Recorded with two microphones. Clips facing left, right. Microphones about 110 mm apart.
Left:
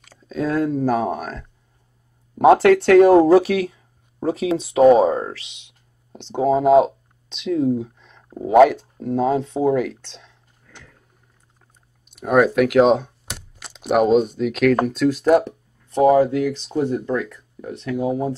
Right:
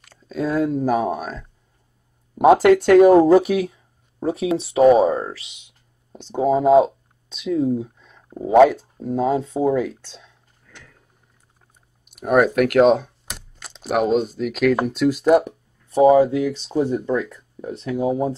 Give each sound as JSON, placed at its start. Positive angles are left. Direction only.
{"t": 0.0, "sound": "speech", "side_deg": 0}
{"t": 2.3, "sound": "speech", "side_deg": -10}
{"t": 12.1, "sound": "speech", "side_deg": 0}